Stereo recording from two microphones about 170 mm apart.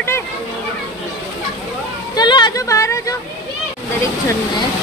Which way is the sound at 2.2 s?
25° left (ahead or behind).